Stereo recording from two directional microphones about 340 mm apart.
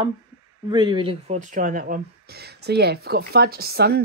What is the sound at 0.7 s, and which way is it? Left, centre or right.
Speech, centre.